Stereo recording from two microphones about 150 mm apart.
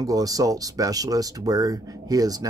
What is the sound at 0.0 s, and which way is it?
Speech, 25° right (ahead or behind).